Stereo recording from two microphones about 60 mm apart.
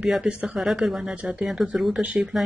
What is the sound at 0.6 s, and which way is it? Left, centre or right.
Speech, centre.